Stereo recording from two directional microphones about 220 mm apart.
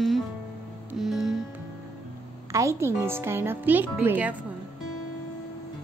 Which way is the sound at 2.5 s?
15° right (ahead or behind).